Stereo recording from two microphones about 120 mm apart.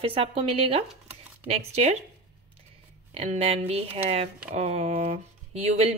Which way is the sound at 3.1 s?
60° right (ahead or behind).